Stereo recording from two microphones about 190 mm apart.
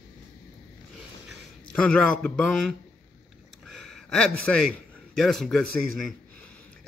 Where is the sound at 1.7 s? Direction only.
5° left (ahead or behind).